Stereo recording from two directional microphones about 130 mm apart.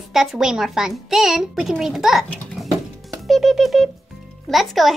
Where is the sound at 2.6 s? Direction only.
Centre (ahead or behind).